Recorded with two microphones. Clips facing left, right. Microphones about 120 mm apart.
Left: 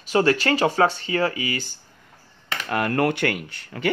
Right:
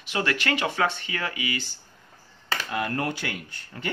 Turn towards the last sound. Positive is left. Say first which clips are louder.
# left 8 dB
turn(degrees=80)